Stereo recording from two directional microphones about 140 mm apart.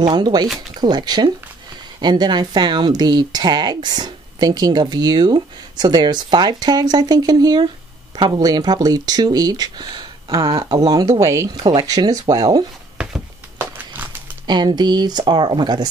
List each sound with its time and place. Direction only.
0.0 s speech: 30° right (ahead or behind)
12.9 s a sound: 5° right (ahead or behind)
14.4 s speech: 30° right (ahead or behind)